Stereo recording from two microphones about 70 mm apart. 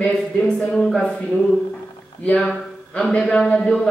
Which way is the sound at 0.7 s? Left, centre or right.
Centre.